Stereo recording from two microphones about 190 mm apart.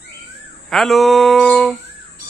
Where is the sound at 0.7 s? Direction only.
Centre (ahead or behind).